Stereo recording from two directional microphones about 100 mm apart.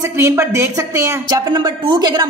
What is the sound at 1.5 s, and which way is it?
Speech, 45° right (ahead or behind).